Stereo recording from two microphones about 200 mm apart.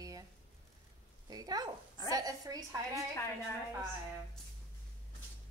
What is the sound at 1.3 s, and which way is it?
A woman's voice, 20° right (ahead or behind).